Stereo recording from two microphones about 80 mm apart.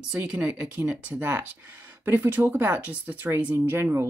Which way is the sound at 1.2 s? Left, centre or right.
Right.